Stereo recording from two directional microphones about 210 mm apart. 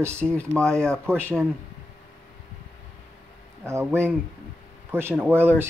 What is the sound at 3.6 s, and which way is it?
Speech, 10° right (ahead or behind).